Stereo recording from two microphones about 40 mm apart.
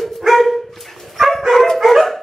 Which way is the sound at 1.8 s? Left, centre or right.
Centre.